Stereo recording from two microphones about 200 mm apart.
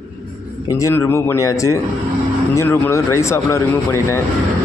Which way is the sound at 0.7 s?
15° left (ahead or behind).